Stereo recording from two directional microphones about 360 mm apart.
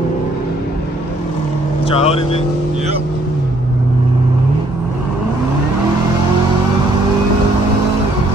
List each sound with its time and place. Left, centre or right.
1.9 s speech: centre